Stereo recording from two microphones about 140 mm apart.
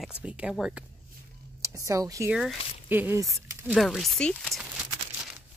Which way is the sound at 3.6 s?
5° right (ahead or behind).